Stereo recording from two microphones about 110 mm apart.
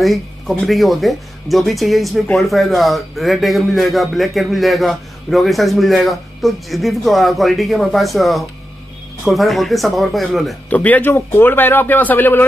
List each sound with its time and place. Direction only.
0.0 s a man's voice: centre (ahead or behind)
10.7 s speech: 15° left (ahead or behind)